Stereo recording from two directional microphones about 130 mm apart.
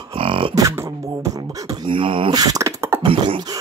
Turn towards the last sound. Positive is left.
turn(degrees=-45)  # may be behind; listen again after turning